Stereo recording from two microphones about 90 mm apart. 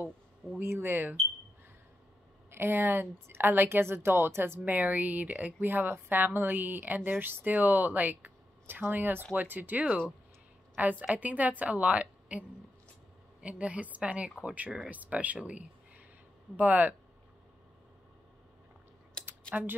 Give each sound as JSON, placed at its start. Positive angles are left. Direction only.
{"t": 0.6, "sound": "a woman's voice", "side_deg": -25}
{"t": 2.5, "sound": "a woman's voice", "side_deg": -25}
{"t": 19.2, "sound": "typing", "side_deg": 10}